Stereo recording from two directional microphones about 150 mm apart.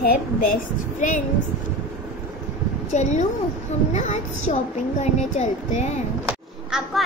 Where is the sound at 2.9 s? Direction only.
50° left (ahead or behind).